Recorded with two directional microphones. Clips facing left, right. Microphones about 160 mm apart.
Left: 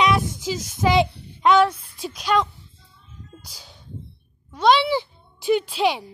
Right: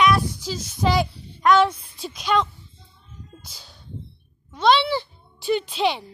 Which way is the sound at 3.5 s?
15° left (ahead or behind).